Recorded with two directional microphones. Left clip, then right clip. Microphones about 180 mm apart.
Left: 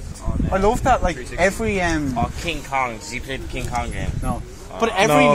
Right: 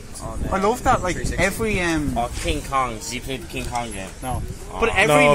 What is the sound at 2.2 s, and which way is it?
Speech, 55° right (ahead or behind).